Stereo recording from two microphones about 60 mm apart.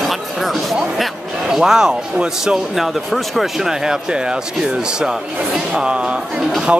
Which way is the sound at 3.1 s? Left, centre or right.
Centre.